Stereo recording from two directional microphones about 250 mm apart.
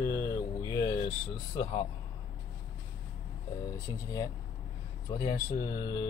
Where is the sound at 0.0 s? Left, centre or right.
Centre.